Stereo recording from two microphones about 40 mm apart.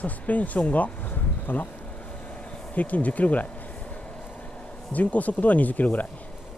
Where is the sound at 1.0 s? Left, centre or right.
Left.